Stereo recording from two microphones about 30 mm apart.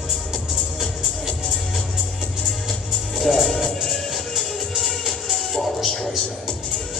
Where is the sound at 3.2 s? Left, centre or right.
Centre.